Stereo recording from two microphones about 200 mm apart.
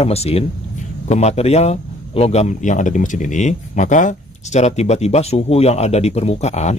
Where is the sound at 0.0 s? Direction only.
30° left (ahead or behind).